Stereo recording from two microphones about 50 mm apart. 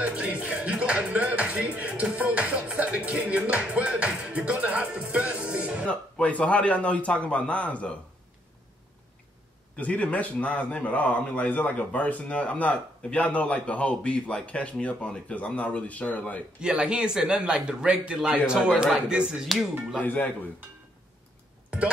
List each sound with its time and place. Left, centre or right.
0.0 s music: right
5.9 s a man's voice: left
9.8 s a man's voice: left
16.6 s speech: centre
17.6 s music: right
18.5 s speech: centre
19.4 s speech: centre
20.0 s speech: left
21.6 s music: right